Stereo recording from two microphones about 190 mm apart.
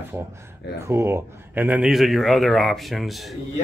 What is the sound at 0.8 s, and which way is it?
Speech, 15° right (ahead or behind).